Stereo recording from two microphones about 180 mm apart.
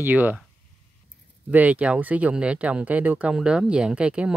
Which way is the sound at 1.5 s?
10° right (ahead or behind).